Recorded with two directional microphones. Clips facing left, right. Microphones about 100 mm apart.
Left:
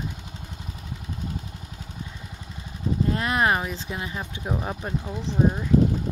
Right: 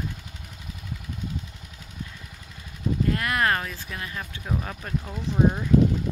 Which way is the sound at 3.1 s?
20° left (ahead or behind).